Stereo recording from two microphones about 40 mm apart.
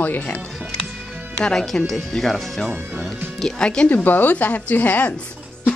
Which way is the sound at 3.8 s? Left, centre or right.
Left.